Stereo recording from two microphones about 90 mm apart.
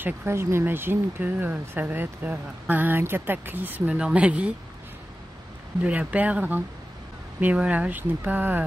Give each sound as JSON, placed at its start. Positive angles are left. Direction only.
{"t": 0.0, "sound": "speech", "side_deg": -25}
{"t": 5.9, "sound": "speech", "side_deg": -15}